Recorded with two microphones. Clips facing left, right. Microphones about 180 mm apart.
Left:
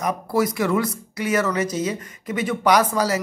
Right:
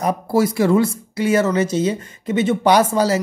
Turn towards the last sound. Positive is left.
turn(degrees=-25)  # may be behind; listen again after turning